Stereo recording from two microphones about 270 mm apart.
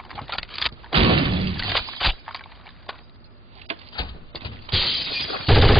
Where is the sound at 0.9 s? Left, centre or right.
Centre.